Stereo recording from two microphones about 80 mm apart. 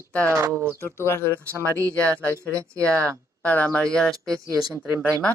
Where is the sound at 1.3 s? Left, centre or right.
Right.